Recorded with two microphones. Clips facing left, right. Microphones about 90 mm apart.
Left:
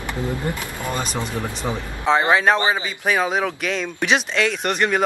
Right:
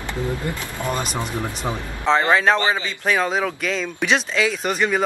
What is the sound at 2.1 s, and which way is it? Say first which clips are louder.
Speech: even; 5° left (ahead or behind).